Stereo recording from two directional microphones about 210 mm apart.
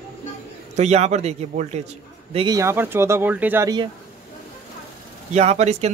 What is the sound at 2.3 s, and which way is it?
Speech, 20° right (ahead or behind).